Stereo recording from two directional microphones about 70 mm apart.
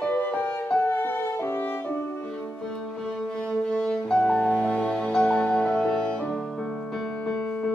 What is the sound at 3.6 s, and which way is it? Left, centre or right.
Music, centre.